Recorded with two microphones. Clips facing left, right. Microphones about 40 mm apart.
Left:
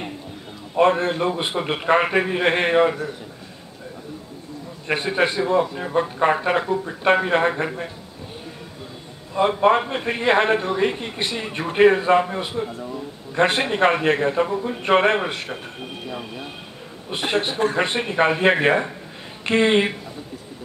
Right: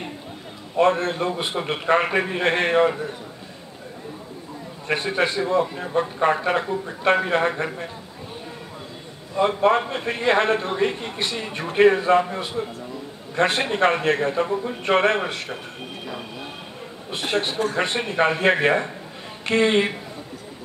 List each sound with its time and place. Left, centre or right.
0.7 s a man's voice: centre
4.8 s a man's voice: centre
9.4 s a man's voice: centre
17.1 s a man's voice: centre